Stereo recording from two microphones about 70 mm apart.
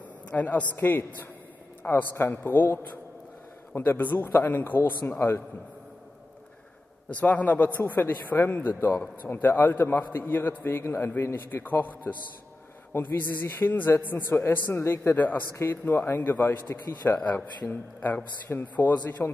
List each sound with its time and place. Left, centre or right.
0.3 s a man's voice: centre
7.1 s a man's voice: left
15.1 s a man's voice: left